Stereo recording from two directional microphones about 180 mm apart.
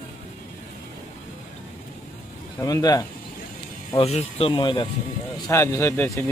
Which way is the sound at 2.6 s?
20° left (ahead or behind).